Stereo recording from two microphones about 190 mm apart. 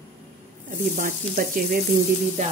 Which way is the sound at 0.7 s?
45° right (ahead or behind).